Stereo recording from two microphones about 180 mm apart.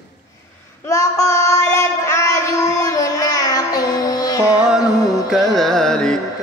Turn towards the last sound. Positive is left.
turn(degrees=5)  # may be behind; listen again after turning